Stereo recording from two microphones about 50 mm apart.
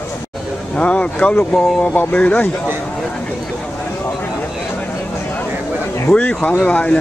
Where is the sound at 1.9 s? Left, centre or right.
Left.